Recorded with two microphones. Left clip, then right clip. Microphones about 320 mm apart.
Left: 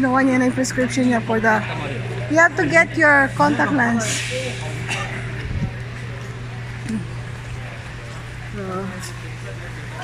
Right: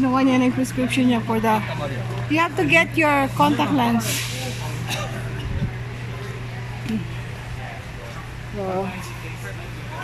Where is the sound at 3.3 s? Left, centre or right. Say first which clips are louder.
Left 2 dB; centre.